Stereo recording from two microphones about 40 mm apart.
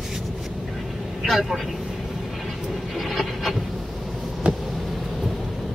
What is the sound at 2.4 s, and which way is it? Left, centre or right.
Vehicle, centre.